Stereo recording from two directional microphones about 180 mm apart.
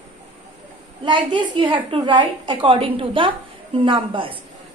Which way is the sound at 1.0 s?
25° right (ahead or behind).